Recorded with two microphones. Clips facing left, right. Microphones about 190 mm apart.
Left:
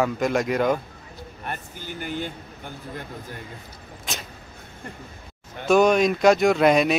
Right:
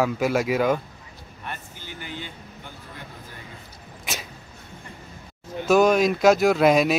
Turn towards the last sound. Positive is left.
turn(degrees=0)  # may be behind; listen again after turning